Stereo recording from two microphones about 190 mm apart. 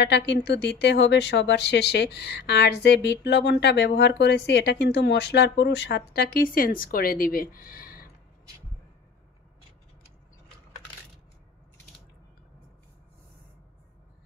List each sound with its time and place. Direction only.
0.0 s speech: 65° left (ahead or behind)